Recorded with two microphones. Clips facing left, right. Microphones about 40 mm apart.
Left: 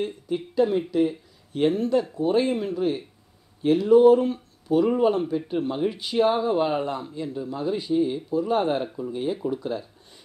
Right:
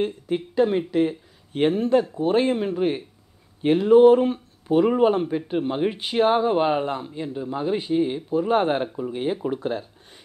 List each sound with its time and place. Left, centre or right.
0.0 s speech: right